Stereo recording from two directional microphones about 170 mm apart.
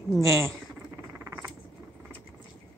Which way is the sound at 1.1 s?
15° right (ahead or behind).